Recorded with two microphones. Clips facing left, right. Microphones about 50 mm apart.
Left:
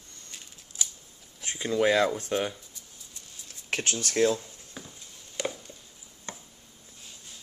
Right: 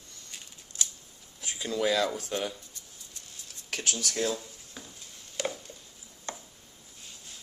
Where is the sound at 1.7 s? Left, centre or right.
Left.